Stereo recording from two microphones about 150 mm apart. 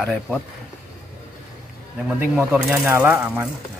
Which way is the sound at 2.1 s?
5° right (ahead or behind).